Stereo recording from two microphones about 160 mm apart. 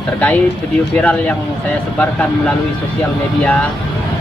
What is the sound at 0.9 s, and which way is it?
Speech, 10° left (ahead or behind).